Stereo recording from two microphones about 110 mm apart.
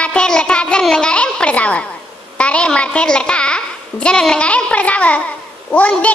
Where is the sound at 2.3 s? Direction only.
10° left (ahead or behind).